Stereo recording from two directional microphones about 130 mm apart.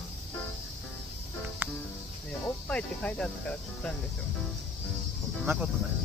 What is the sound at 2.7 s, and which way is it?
Cricket, 10° left (ahead or behind).